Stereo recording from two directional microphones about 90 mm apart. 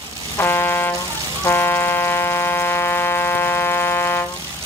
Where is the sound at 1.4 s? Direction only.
25° left (ahead or behind).